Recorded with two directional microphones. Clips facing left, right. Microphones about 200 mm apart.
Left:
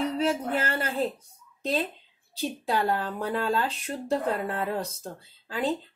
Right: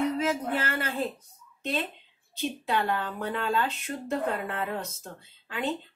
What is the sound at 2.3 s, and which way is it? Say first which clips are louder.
Speech: left 1 dB; 35° left (ahead or behind).